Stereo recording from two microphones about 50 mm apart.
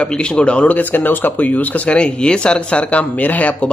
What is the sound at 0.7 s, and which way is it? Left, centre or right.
Speech, left.